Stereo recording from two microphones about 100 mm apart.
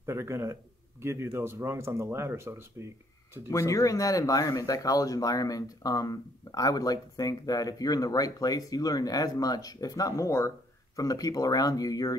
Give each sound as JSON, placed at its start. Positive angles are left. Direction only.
{"t": 0.0, "sound": "speech", "side_deg": -25}
{"t": 3.4, "sound": "speech", "side_deg": 30}